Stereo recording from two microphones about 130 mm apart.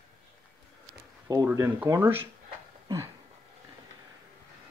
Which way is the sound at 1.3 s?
35° right (ahead or behind).